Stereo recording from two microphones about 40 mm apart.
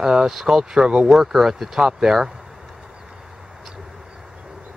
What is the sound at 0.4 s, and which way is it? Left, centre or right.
Speech, centre.